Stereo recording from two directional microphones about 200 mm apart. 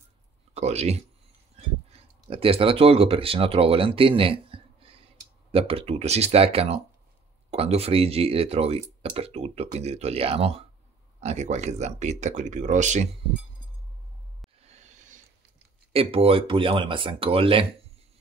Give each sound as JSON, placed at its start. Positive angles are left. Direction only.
{"t": 0.6, "sound": "speech", "side_deg": -35}
{"t": 14.6, "sound": "a sound", "side_deg": -35}
{"t": 15.9, "sound": "speech", "side_deg": -30}